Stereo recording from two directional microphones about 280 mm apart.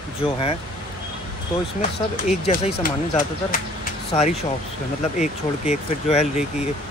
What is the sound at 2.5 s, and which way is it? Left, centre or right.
Speech, left.